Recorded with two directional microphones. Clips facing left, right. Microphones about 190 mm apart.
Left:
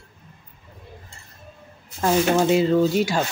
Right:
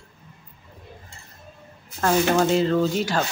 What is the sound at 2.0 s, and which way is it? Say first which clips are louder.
Speech: left 1 dB; 10° left (ahead or behind).